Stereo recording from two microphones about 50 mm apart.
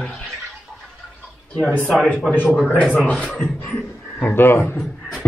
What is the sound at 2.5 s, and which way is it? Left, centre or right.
A man's voice, left.